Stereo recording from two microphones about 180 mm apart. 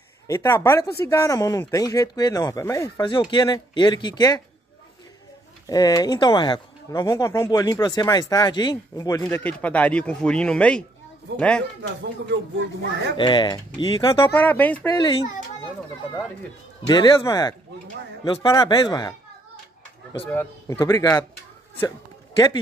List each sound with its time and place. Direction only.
0.3 s speech: 15° left (ahead or behind)
5.7 s a man's voice: 20° left (ahead or behind)
12.0 s speech: 80° right
13.1 s speech: 25° left (ahead or behind)
14.3 s a man's voice: 10° left (ahead or behind)
16.8 s speech: 20° left (ahead or behind)
20.2 s a man's voice: 10° left (ahead or behind)